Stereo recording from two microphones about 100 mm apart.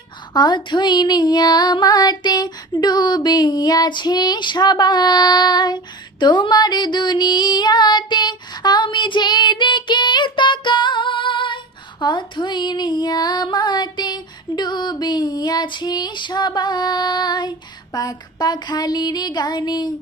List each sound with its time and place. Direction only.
0.3 s female singing: 50° left (ahead or behind)